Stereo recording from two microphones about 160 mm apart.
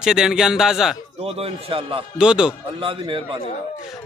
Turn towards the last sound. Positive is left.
turn(degrees=-30)  # may be behind; listen again after turning